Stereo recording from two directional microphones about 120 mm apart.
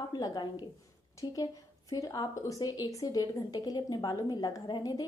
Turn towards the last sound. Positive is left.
turn(degrees=35)  # may be behind; listen again after turning